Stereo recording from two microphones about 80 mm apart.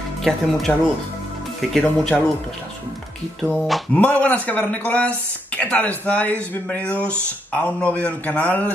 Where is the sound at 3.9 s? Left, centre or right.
Centre.